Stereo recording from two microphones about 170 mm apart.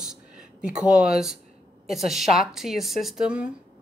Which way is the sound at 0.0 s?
5° right (ahead or behind).